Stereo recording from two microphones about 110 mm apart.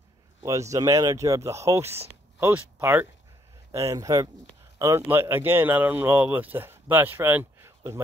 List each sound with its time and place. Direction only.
0.4 s speech: 30° right (ahead or behind)
3.7 s speech: 30° right (ahead or behind)